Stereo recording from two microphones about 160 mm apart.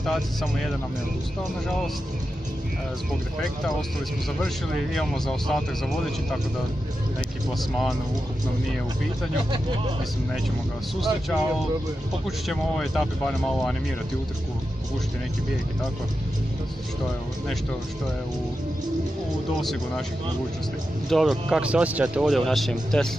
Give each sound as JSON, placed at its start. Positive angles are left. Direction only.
{"t": 0.0, "sound": "speech", "side_deg": 0}
{"t": 4.9, "sound": "speech", "side_deg": 0}
{"t": 11.0, "sound": "speech", "side_deg": 0}
{"t": 12.4, "sound": "speech", "side_deg": 0}
{"t": 21.1, "sound": "speech", "side_deg": 0}